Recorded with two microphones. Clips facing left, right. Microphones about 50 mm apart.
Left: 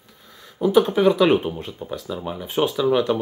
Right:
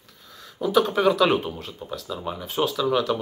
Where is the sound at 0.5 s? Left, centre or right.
Centre.